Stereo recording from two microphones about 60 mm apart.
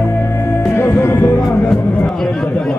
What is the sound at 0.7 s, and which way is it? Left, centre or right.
Music, left.